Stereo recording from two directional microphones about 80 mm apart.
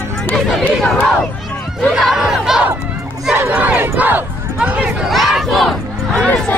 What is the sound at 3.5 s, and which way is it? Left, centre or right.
Battle cry, right.